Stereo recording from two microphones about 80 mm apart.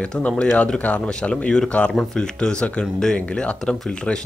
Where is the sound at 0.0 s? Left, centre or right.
Centre.